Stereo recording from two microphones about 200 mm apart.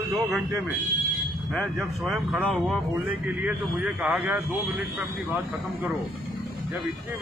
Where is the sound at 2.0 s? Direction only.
5° right (ahead or behind).